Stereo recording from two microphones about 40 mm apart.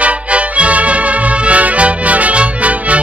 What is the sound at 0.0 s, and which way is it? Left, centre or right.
Music, right.